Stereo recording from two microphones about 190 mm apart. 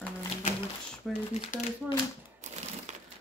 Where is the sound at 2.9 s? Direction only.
40° right (ahead or behind).